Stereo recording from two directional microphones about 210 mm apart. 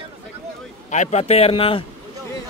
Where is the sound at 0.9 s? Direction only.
35° left (ahead or behind).